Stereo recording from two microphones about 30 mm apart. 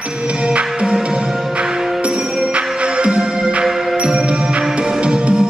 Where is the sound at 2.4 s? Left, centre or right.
Right.